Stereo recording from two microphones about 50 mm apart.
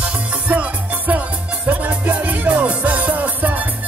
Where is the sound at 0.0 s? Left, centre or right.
Right.